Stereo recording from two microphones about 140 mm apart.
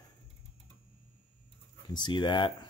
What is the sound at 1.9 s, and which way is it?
Speech, 35° left (ahead or behind).